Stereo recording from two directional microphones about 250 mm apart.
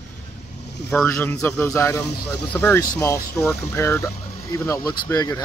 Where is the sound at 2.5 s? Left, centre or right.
Centre.